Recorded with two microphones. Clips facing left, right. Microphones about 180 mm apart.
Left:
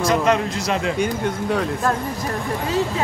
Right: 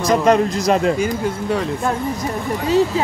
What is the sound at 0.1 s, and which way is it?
Speech, 40° right (ahead or behind).